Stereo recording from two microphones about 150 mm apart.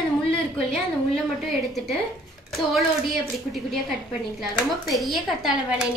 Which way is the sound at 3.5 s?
Centre (ahead or behind).